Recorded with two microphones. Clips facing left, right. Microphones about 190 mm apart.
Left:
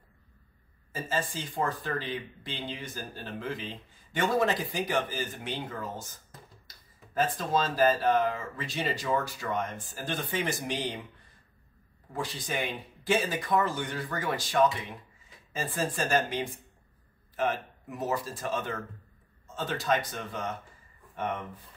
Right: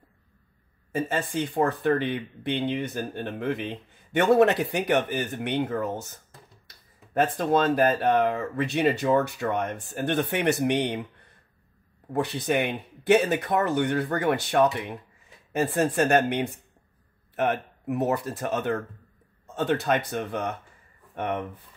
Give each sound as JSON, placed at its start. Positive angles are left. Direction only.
{"t": 0.9, "sound": "speech", "side_deg": -65}
{"t": 7.2, "sound": "speech", "side_deg": -60}